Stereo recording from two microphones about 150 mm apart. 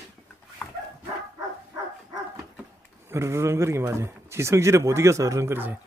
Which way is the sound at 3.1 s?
20° right (ahead or behind).